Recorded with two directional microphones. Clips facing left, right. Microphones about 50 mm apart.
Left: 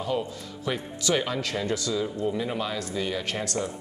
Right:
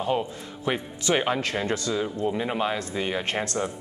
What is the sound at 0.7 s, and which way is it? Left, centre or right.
Speech, right.